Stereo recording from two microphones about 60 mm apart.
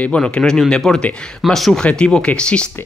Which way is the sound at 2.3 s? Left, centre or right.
Centre.